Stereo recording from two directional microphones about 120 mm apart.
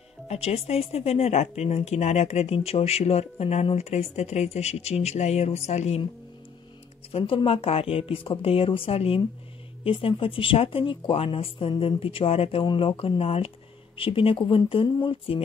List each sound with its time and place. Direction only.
0.3 s speech: 60° left (ahead or behind)
7.1 s speech: 50° left (ahead or behind)